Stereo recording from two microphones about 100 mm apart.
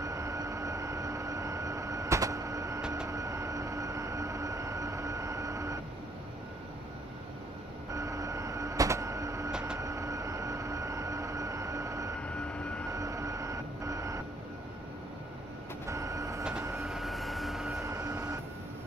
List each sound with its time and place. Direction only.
0.0 s vehicle: 30° right (ahead or behind)
3.1 s train: 30° right (ahead or behind)
7.9 s printer: 30° right (ahead or behind)
9.5 s vehicle: 10° right (ahead or behind)
9.8 s train: 30° right (ahead or behind)
12.2 s vehicle: 10° left (ahead or behind)
12.9 s train: 30° right (ahead or behind)
15.9 s train: 30° right (ahead or behind)
16.8 s vehicle: centre (ahead or behind)
17.8 s train: 30° right (ahead or behind)